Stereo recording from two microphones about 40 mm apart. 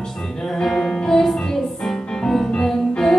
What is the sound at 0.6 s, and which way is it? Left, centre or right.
Music, centre.